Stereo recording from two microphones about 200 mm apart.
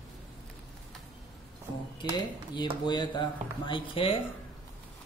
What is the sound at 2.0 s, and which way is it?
Speech, 20° left (ahead or behind).